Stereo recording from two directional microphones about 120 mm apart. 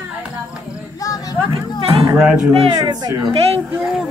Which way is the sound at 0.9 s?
30° left (ahead or behind).